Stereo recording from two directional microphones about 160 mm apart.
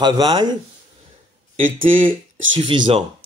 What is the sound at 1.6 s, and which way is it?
Speech, 60° right (ahead or behind).